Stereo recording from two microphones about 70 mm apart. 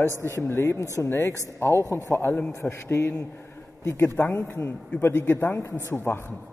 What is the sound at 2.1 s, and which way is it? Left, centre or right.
A woman's voice, left.